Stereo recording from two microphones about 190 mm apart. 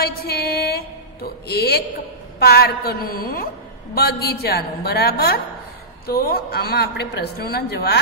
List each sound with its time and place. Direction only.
0.0 s music: 55° left (ahead or behind)
2.3 s a woman's voice: 55° left (ahead or behind)